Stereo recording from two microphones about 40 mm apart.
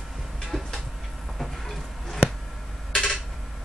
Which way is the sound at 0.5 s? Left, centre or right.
Left.